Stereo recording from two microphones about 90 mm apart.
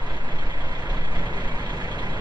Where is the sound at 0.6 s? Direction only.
55° right (ahead or behind).